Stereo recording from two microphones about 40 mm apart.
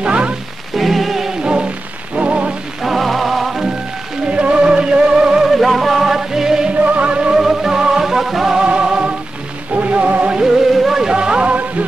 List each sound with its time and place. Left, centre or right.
0.0 s music: right
0.7 s rain on surface: centre
1.4 s rain on surface: right
2.8 s music: centre
4.3 s music: right
5.5 s music: centre
6.9 s music: right
7.3 s music: centre
8.6 s music: right
10.4 s music: centre
11.1 s music: right